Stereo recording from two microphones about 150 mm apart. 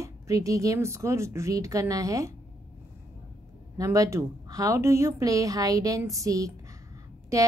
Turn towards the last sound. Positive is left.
turn(degrees=-20)  # may be behind; listen again after turning